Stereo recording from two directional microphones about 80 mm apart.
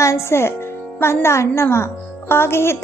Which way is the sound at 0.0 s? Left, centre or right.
Left.